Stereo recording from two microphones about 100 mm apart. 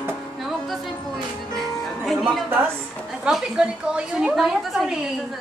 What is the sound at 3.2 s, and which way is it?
A woman's voice, 5° right (ahead or behind).